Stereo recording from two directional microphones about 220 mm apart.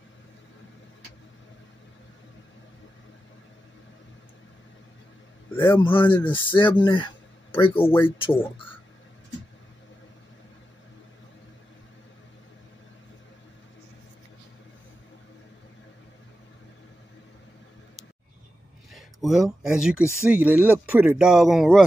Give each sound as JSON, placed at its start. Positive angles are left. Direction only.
{"t": 5.6, "sound": "a man's voice", "side_deg": 10}
{"t": 5.9, "sound": "speech", "side_deg": 20}
{"t": 19.2, "sound": "speech", "side_deg": 0}